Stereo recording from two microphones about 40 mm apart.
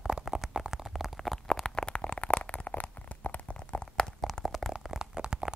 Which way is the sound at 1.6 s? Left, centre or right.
Left.